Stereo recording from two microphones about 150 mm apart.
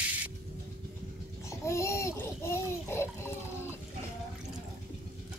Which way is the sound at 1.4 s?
20° left (ahead or behind).